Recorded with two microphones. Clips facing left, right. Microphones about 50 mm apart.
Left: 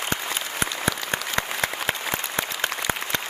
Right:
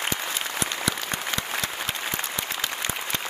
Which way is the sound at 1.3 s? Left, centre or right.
Left.